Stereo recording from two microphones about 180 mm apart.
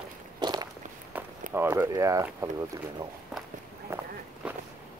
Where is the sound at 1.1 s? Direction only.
10° right (ahead or behind).